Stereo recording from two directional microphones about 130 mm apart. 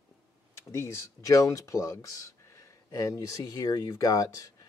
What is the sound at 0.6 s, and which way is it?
Speech, 25° left (ahead or behind).